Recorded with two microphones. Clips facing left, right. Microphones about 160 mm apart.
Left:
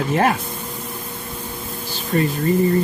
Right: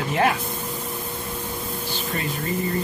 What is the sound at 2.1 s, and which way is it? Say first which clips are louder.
Speech: left 12 dB; 35° left (ahead or behind).